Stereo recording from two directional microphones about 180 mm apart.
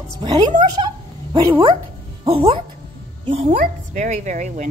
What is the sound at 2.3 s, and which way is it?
A woman's voice, 30° right (ahead or behind).